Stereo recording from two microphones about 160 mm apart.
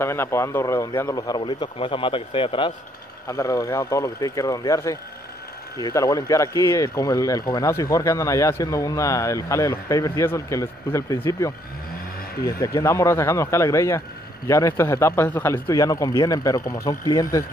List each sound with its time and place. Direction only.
0.0 s speech: 15° left (ahead or behind); by 2.7 s 35° left (ahead or behind)
3.3 s speech: 20° left (ahead or behind)
12.5 s speech: 20° left (ahead or behind)